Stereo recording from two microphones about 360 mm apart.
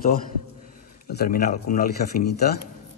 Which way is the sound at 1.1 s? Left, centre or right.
Left.